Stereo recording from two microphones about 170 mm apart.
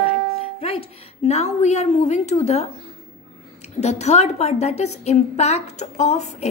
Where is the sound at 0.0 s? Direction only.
35° left (ahead or behind).